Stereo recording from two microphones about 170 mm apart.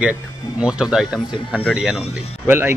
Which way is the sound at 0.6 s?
5° right (ahead or behind).